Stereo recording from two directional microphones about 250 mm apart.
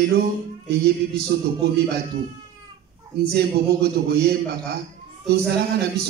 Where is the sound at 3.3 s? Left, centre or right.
Right.